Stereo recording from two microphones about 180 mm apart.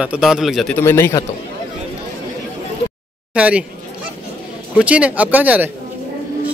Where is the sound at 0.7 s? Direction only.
15° left (ahead or behind).